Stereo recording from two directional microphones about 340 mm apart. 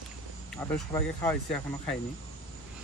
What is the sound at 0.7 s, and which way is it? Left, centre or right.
Speech, centre.